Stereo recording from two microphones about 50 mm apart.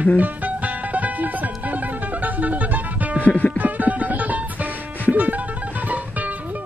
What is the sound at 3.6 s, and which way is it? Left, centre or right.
Music, right.